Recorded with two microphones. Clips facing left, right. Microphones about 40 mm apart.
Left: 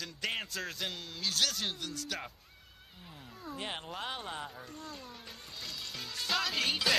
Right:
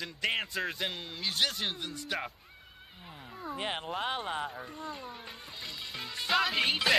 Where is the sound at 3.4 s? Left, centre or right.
Right.